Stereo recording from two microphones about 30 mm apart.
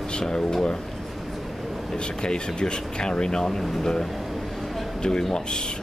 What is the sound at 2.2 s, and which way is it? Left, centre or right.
Speech, left.